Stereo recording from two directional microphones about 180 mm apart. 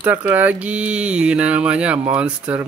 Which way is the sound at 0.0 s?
10° right (ahead or behind).